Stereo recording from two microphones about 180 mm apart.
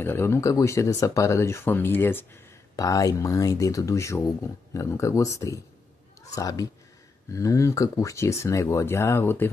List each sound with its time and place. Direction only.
0.0 s speech: 15° left (ahead or behind)